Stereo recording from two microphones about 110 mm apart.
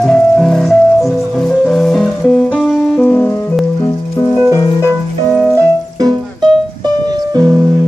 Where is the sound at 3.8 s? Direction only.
35° left (ahead or behind).